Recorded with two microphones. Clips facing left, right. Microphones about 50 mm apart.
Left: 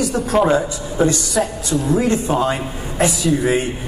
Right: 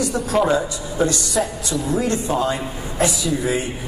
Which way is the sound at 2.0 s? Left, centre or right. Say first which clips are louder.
Left 3 dB; left.